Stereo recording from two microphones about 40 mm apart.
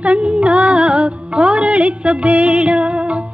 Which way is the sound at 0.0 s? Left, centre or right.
Right.